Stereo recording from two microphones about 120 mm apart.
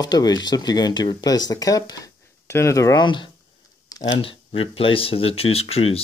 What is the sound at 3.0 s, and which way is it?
Speech, 40° left (ahead or behind).